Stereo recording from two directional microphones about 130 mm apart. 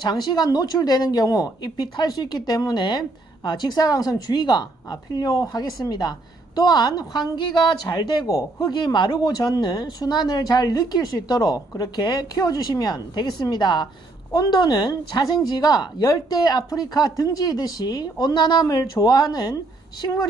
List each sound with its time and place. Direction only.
0.0 s speech: 35° left (ahead or behind)